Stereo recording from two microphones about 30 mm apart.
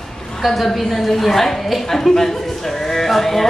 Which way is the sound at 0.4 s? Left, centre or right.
Centre.